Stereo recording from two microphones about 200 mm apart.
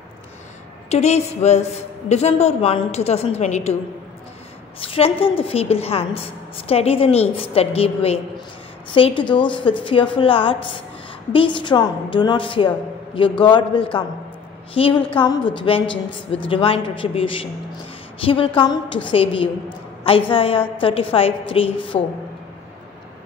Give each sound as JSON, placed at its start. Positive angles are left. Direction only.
{"t": 0.8, "sound": "a man's voice", "side_deg": 35}
{"t": 4.7, "sound": "a woman's voice", "side_deg": 30}